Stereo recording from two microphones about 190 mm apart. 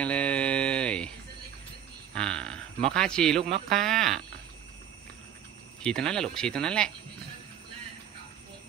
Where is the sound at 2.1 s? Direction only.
5° left (ahead or behind).